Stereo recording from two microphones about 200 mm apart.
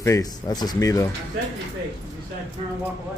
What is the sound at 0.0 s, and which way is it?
A man's voice, 15° left (ahead or behind).